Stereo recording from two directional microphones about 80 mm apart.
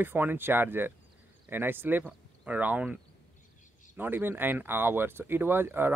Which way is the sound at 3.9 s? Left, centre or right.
Right.